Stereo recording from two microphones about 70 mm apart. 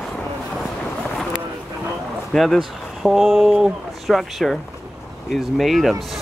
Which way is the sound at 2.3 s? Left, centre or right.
Centre.